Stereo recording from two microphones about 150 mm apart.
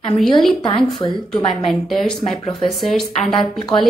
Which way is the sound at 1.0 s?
35° left (ahead or behind).